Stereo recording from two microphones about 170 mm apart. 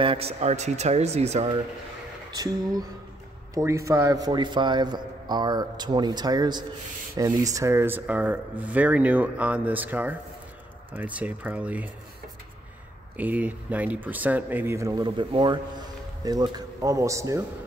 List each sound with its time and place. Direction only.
0.0 s speech: 35° right (ahead or behind)
2.3 s a man's voice: 25° right (ahead or behind)
13.1 s a man's voice: 10° right (ahead or behind)